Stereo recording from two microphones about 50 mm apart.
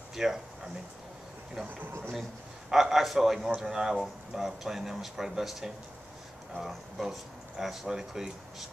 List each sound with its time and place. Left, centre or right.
0.1 s speech: centre
1.8 s speech: right
2.7 s speech: centre
6.7 s speech: centre